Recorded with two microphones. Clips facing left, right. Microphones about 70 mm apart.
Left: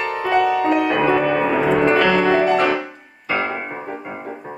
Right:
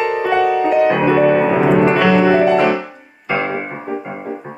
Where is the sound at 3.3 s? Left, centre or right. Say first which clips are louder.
Right 2 dB; centre.